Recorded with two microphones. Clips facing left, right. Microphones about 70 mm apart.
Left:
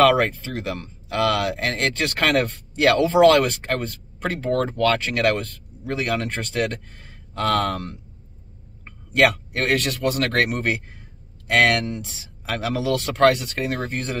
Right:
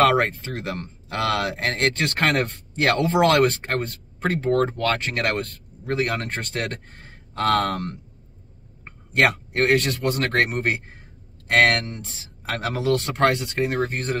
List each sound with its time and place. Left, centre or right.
0.0 s speech: right
2.1 s speech: right
2.4 s a man's voice: right
13.0 s speech: right
13.8 s speech: right